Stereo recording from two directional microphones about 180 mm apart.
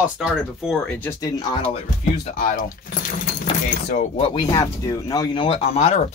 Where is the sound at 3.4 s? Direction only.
40° left (ahead or behind).